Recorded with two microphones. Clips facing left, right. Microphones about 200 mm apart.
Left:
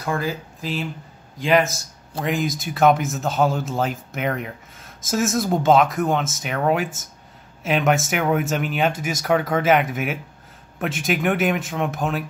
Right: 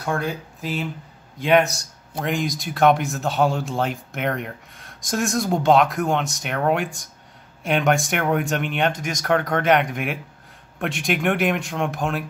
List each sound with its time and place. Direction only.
0.0 s speech: centre (ahead or behind)